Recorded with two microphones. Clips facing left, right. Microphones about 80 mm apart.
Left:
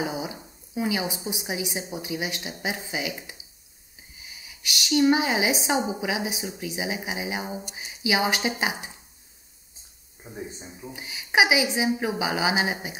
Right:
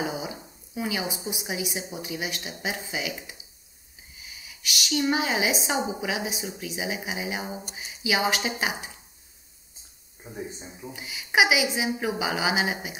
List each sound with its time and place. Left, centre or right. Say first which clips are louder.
0.0 s a sound: left 1 dB; centre
0.7 s speech: left 3 dB; centre
4.5 s speech: left 3 dB; centre
10.2 s speech: right 1 dB; centre
10.9 s speech: left 1 dB; centre